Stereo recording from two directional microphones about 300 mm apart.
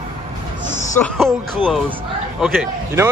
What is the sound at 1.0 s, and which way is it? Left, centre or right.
A man's voice, centre.